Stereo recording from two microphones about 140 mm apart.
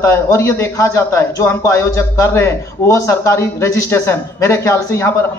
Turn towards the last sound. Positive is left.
turn(degrees=20)  # may be behind; listen again after turning